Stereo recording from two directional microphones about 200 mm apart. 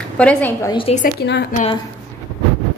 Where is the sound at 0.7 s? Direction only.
30° left (ahead or behind).